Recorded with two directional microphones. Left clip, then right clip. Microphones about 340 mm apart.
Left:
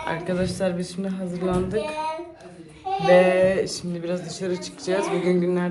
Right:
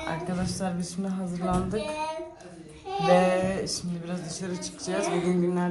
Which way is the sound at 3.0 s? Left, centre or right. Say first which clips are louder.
Left 6 dB; centre.